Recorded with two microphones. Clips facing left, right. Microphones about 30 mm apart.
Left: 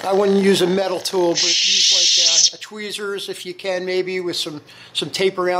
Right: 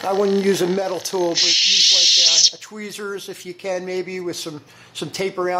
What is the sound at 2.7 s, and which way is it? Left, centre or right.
Speech, left.